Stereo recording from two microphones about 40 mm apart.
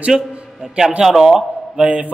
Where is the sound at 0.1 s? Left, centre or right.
Centre.